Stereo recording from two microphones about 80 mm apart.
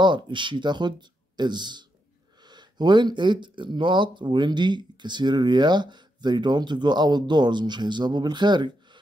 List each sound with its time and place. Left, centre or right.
0.0 s speech: right